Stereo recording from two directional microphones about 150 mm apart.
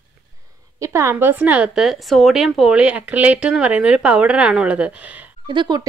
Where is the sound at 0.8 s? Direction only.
20° right (ahead or behind).